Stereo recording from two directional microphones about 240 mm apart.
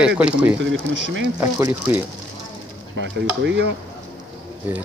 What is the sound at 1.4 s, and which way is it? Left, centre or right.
Speech, centre.